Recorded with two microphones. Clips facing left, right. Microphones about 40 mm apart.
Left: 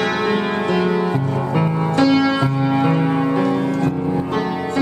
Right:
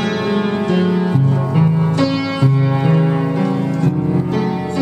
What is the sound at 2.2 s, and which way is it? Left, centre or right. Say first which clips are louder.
Music: left 3 dB; left.